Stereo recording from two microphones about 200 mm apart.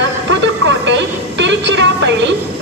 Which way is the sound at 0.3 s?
65° right (ahead or behind).